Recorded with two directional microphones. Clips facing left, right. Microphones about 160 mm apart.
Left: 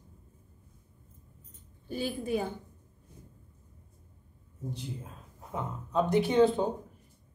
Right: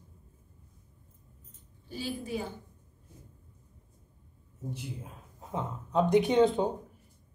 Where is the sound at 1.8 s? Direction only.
55° left (ahead or behind).